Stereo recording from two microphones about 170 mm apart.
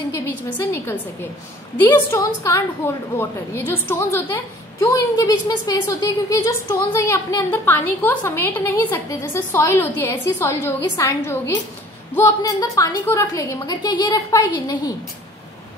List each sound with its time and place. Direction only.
0.1 s a woman's voice: 15° left (ahead or behind)